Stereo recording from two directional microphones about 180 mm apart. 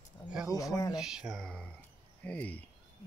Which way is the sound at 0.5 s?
20° left (ahead or behind).